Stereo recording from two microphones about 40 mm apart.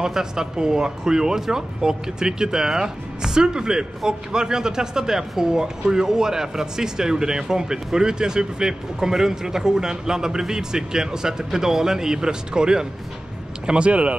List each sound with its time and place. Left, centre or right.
0.0 s speech: centre
13.7 s speech: right